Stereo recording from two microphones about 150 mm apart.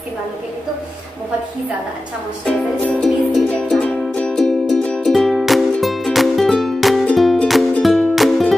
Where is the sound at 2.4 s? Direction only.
5° left (ahead or behind).